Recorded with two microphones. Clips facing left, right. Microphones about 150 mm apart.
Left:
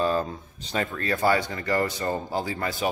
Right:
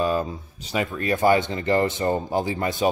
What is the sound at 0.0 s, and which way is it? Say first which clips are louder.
Speech: right 1 dB; 10° right (ahead or behind).